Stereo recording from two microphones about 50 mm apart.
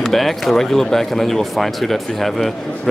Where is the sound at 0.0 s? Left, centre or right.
Centre.